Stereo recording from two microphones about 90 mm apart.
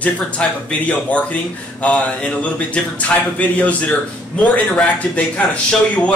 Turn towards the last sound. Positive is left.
turn(degrees=15)  # may be behind; listen again after turning